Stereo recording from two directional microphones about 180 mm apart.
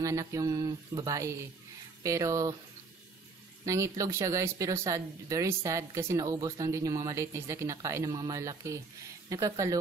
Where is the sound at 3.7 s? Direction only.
15° right (ahead or behind).